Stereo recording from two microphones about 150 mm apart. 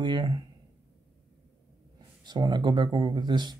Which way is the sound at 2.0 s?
30° right (ahead or behind).